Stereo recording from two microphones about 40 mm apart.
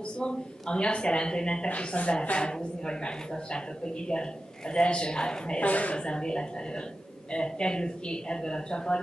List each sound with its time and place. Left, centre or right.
0.2 s a woman's voice: left
5.6 s speech: left
5.9 s a woman's voice: left